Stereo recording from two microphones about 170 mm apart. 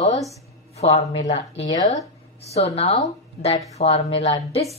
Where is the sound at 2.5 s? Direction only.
35° left (ahead or behind).